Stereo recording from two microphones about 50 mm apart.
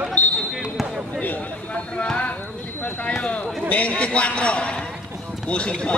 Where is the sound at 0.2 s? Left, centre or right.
Left.